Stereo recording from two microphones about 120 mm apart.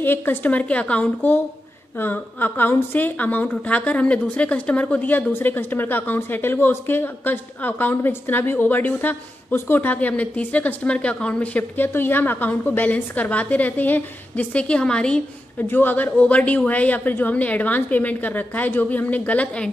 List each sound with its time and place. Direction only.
0.0 s a woman's voice: 15° left (ahead or behind)